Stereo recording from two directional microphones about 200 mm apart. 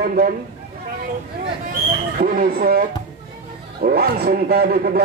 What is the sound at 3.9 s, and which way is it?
A man's voice, 50° right (ahead or behind).